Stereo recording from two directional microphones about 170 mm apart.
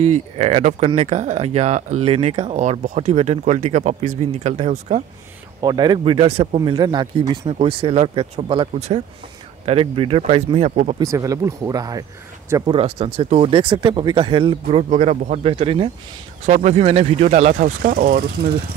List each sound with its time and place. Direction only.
0.0 s speech: 40° right (ahead or behind)
5.6 s speech: 25° right (ahead or behind)
11.0 s speech: 20° right (ahead or behind)
12.6 s speech: 35° right (ahead or behind)
15.5 s speech: 30° right (ahead or behind); by 18.2 s 55° right (ahead or behind)